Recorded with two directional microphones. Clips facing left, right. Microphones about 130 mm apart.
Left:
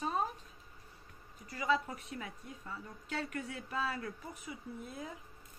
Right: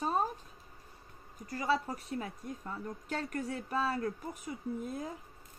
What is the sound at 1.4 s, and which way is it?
A woman's voice, 40° right (ahead or behind).